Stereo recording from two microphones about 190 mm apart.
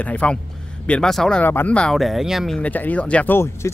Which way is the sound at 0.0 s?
5° left (ahead or behind).